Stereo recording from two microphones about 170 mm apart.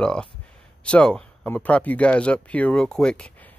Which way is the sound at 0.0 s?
5° left (ahead or behind).